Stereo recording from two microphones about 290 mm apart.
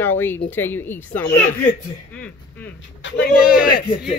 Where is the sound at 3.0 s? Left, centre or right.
Left.